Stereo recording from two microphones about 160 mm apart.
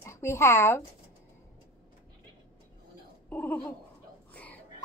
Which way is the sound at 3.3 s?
10° left (ahead or behind).